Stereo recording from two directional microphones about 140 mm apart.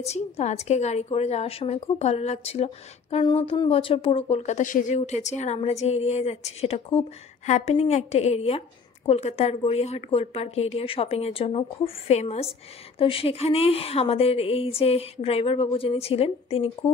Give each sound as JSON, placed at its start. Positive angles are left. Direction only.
{"t": 0.0, "sound": "a woman's voice", "side_deg": 50}